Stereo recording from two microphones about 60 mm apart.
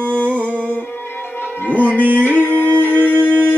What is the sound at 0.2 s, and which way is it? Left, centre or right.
Music, left.